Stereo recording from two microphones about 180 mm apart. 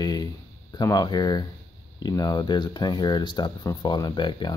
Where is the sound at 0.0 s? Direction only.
20° left (ahead or behind).